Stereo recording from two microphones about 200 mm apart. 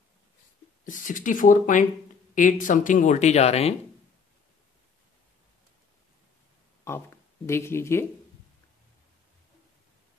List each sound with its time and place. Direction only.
0.8 s speech: 40° left (ahead or behind)
7.4 s speech: 15° left (ahead or behind)